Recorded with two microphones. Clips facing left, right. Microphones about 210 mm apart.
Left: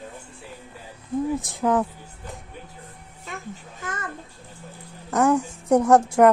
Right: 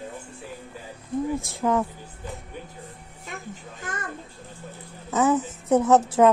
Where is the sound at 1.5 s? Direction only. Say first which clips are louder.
Left 2 dB; 15° left (ahead or behind).